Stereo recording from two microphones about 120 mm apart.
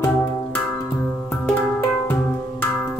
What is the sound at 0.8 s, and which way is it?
Music, 20° left (ahead or behind).